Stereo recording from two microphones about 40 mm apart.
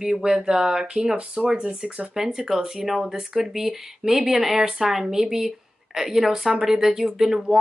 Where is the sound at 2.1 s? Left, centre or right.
Centre.